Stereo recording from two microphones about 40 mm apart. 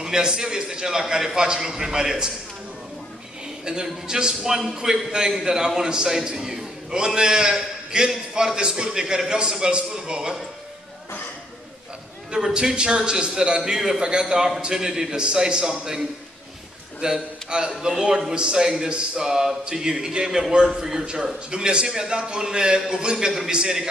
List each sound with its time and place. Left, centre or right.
0.0 s a man's voice: centre
3.6 s a man's voice: centre
12.5 s a man's voice: right